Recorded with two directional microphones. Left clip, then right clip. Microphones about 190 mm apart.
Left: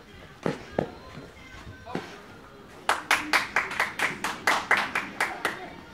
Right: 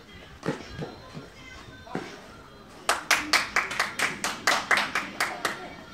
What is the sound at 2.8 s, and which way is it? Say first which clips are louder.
Clapping: even; 45° right (ahead or behind).